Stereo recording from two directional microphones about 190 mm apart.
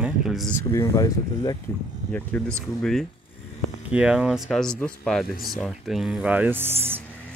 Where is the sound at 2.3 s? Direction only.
5° left (ahead or behind); by 6.7 s 10° right (ahead or behind).